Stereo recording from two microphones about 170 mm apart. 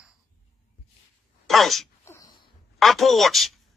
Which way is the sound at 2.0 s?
20° left (ahead or behind).